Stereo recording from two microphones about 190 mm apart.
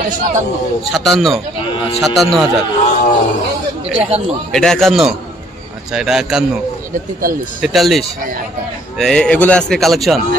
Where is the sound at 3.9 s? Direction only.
30° right (ahead or behind).